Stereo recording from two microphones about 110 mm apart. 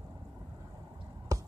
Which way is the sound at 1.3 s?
30° right (ahead or behind).